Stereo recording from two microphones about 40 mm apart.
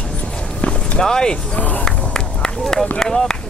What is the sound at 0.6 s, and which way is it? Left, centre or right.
Music, left.